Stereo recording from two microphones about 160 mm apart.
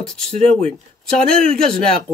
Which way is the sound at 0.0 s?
5° left (ahead or behind).